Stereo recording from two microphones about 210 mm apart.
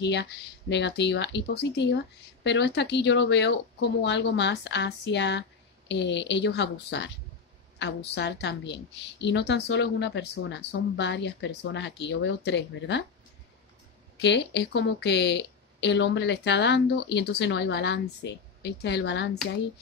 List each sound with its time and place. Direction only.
0.0 s a woman's voice: 55° left (ahead or behind)
8.1 s a woman's voice: 55° left (ahead or behind)
14.1 s a woman's voice: 55° left (ahead or behind)